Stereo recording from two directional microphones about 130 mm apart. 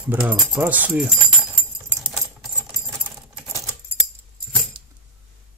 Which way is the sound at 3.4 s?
20° right (ahead or behind).